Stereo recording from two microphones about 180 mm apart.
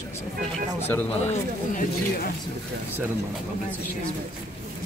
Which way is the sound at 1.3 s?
50° left (ahead or behind).